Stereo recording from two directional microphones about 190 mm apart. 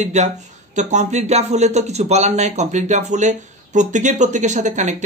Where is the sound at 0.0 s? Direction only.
40° right (ahead or behind).